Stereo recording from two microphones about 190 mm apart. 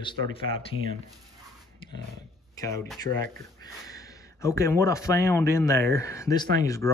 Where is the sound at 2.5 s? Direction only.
15° left (ahead or behind).